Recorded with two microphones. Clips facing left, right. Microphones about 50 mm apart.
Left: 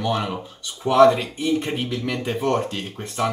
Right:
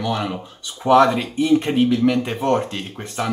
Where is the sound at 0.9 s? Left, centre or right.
Centre.